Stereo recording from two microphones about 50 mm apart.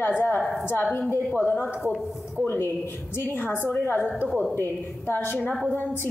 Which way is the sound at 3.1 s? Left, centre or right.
Left.